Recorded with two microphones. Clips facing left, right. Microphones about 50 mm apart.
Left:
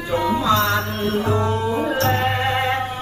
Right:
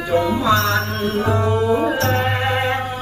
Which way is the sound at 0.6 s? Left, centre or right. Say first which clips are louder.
Right 1 dB; centre.